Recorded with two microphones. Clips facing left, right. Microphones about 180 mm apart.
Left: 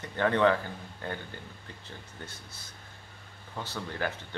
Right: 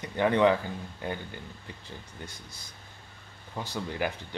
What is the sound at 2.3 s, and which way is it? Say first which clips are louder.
Speech: right 1 dB; 15° right (ahead or behind).